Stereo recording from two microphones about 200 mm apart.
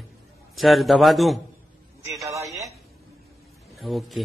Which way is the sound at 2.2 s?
15° right (ahead or behind).